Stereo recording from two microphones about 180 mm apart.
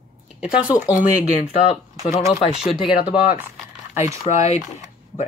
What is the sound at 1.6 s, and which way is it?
Speech, 35° left (ahead or behind).